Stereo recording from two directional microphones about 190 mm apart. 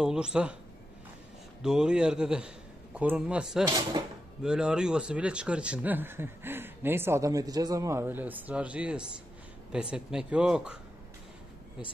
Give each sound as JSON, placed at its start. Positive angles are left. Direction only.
{"t": 0.0, "sound": "speech", "side_deg": -5}
{"t": 1.6, "sound": "a man's voice", "side_deg": -5}
{"t": 3.6, "sound": "speech", "side_deg": -20}
{"t": 4.4, "sound": "speech", "side_deg": -5}